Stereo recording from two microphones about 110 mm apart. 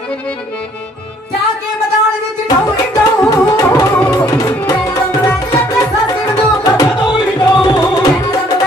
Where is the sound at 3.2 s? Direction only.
35° left (ahead or behind).